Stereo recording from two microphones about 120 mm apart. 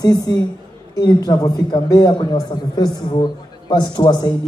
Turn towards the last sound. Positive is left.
turn(degrees=40)  # may be behind; listen again after turning